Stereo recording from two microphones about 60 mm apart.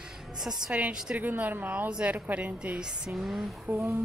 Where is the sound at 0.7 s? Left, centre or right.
Centre.